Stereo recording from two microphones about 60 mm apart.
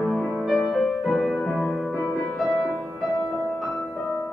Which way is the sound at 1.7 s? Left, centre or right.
Left.